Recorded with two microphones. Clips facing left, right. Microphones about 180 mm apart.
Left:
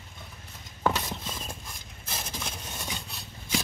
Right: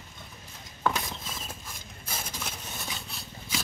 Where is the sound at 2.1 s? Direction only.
10° right (ahead or behind).